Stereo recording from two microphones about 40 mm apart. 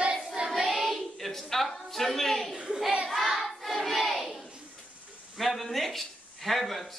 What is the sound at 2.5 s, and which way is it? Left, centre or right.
Speech, centre.